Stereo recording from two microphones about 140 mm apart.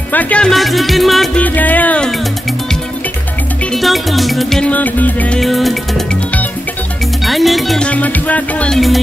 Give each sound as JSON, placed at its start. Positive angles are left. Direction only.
{"t": 0.1, "sound": "music", "side_deg": 10}
{"t": 1.4, "sound": "music", "side_deg": 10}
{"t": 3.7, "sound": "music", "side_deg": 0}
{"t": 7.2, "sound": "music", "side_deg": 0}